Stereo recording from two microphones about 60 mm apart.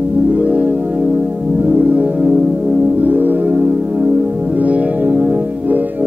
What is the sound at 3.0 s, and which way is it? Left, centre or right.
Music, right.